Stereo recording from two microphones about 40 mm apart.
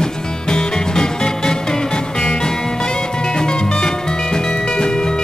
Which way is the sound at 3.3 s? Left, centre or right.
Centre.